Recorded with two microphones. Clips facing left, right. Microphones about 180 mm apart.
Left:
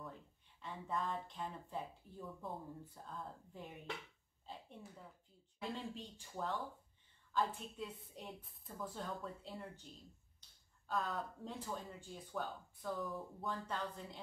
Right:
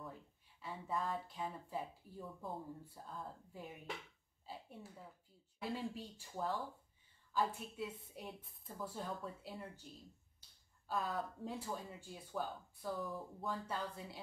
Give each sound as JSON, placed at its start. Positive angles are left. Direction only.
{"t": 0.6, "sound": "speech", "side_deg": 0}
{"t": 10.9, "sound": "speech", "side_deg": -5}